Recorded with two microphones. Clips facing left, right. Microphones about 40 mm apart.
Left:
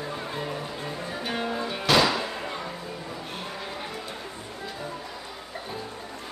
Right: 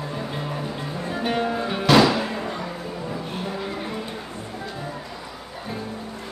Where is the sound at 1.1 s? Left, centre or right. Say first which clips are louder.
Right 8 dB; right.